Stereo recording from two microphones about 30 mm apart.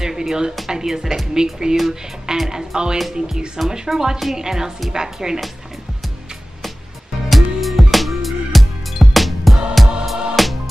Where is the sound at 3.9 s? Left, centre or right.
Centre.